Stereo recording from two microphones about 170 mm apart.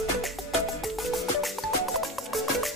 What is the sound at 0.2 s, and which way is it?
Music, centre (ahead or behind).